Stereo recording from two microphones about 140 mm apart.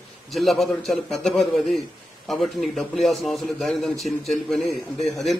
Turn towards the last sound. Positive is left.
turn(degrees=0)  # may be behind; listen again after turning